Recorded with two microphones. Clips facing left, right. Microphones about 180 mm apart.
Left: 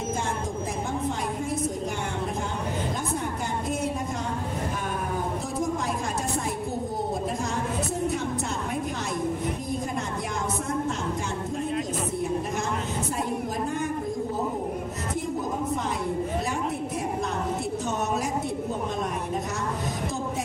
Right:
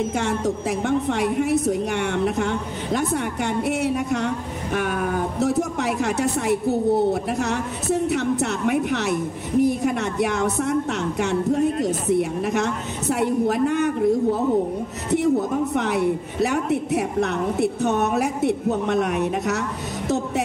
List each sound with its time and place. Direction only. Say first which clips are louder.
0.8 s a woman's voice: right 10 dB; 75° right (ahead or behind)
3.6 s a woman's voice: right 6 dB; 70° right (ahead or behind)
6.4 s a woman's voice: right 10 dB; 70° right (ahead or behind)
9.6 s a woman's voice: right 11 dB; 70° right (ahead or behind)
11.8 s a woman's voice: right 8 dB; 70° right (ahead or behind)
15.7 s a woman's voice: right 7 dB; 75° right (ahead or behind)